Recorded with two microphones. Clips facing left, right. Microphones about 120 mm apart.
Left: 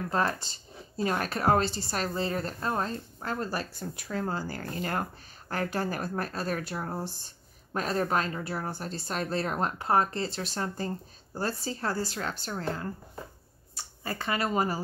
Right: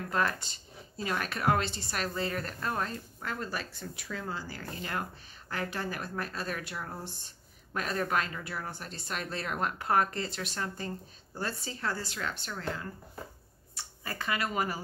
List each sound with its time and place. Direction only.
0.1 s speech: 30° left (ahead or behind)